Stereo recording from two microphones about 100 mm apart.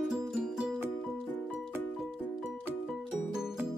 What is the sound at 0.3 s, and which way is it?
Music, 5° right (ahead or behind).